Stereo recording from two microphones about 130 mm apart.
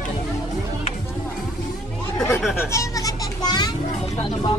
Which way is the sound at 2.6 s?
25° left (ahead or behind).